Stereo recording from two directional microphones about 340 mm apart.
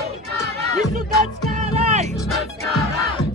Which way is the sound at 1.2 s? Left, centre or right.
Centre.